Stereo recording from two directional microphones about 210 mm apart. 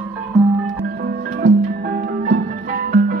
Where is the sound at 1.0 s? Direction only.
50° right (ahead or behind).